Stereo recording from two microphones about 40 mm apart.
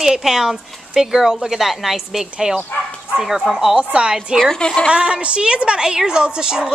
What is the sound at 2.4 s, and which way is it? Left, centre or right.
Speech, right.